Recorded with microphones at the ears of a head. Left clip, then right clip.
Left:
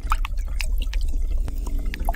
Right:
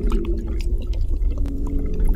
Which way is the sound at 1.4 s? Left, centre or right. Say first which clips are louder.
Right 11 dB; right.